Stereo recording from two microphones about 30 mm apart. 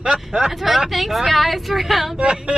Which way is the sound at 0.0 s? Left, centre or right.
Right.